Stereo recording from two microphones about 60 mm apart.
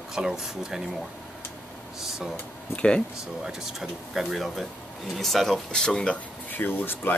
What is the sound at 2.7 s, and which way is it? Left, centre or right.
Speech, centre.